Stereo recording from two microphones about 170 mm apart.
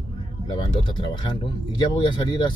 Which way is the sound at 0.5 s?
25° left (ahead or behind).